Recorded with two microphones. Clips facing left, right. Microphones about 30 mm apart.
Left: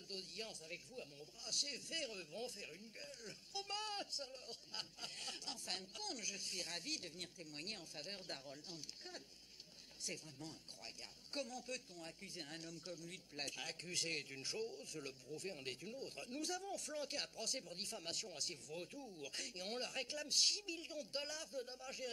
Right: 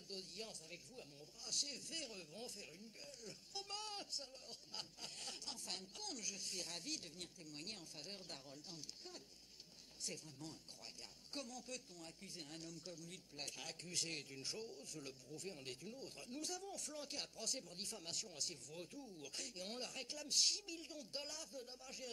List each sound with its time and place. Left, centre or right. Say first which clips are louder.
0.1 s a man's voice: left 2 dB; left